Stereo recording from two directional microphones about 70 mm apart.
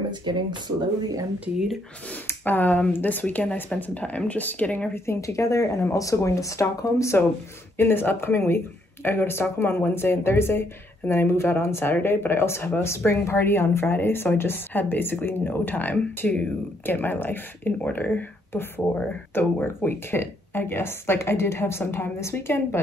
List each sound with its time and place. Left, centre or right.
2.2 s speech: left
4.9 s speech: left
7.7 s speech: left